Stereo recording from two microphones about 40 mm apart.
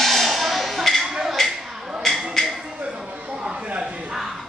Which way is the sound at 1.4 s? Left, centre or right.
Centre.